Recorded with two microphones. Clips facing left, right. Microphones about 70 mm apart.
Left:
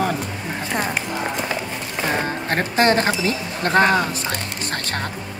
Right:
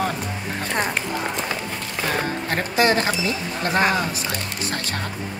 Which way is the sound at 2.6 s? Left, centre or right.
Left.